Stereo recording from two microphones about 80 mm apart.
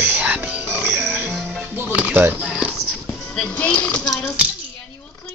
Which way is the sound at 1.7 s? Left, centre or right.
Centre.